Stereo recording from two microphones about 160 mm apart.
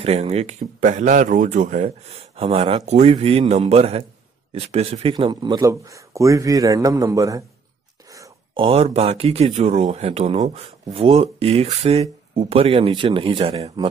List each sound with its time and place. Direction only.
0.0 s speech: 40° right (ahead or behind)
2.3 s speech: 35° right (ahead or behind)
5.1 s a man's voice: 25° right (ahead or behind)
8.5 s speech: 35° right (ahead or behind)